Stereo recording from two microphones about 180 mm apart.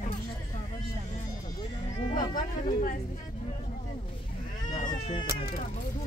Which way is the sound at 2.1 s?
50° left (ahead or behind).